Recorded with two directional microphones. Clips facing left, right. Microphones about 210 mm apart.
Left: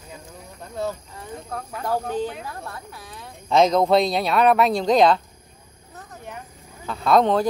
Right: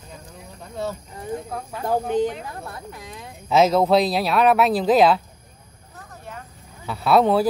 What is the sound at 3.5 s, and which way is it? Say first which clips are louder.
Speech: even; 5° right (ahead or behind).